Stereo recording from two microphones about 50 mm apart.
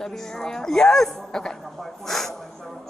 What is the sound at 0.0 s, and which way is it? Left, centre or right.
Speech, centre.